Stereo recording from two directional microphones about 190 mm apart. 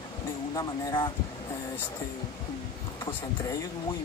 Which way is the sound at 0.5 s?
25° left (ahead or behind).